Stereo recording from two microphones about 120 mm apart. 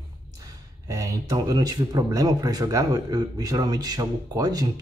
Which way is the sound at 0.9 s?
30° right (ahead or behind).